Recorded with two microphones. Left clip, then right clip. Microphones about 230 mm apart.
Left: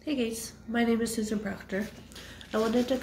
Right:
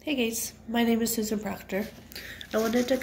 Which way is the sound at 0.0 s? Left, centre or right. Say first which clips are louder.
Right 3 dB; centre.